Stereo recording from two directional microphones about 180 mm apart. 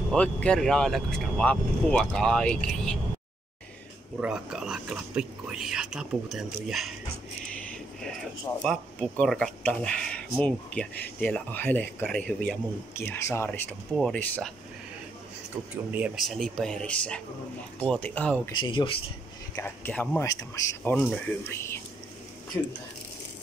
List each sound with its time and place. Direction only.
0.1 s speech: 5° left (ahead or behind)
4.2 s speech: 5° right (ahead or behind)
8.6 s speech: 5° left (ahead or behind)
15.9 s speech: 5° right (ahead or behind)
18.6 s speech: 25° left (ahead or behind)
19.5 s speech: 10° left (ahead or behind)
20.2 s speech: 20° left (ahead or behind)